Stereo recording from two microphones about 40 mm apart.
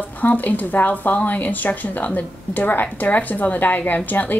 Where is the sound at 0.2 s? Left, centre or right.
Left.